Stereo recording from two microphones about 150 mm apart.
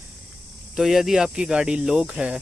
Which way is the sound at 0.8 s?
5° right (ahead or behind).